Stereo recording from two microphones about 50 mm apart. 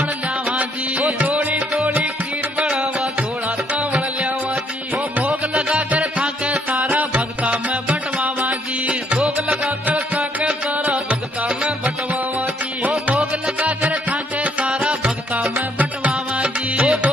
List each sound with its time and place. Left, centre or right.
0.5 s music: right
2.6 s music: right
5.5 s music: centre
6.7 s music: right
13.0 s music: right
15.5 s music: right